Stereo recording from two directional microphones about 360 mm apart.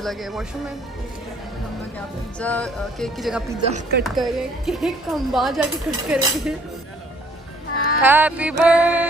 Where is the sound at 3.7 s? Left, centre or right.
Right.